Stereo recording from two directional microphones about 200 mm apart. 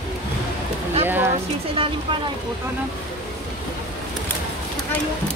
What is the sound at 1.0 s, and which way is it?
Speech, 10° right (ahead or behind).